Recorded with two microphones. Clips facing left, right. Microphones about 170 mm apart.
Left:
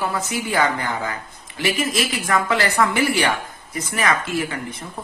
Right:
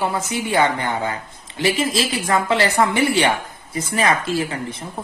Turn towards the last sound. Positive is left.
turn(degrees=-30)  # may be behind; listen again after turning